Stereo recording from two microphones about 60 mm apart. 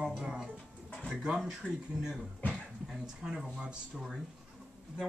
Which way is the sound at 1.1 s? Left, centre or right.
Centre.